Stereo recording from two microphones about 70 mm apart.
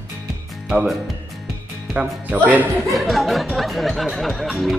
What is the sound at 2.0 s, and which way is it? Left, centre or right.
Speech, centre.